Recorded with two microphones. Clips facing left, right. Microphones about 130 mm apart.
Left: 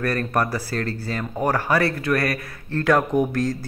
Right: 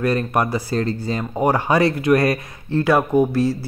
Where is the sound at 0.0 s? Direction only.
15° right (ahead or behind).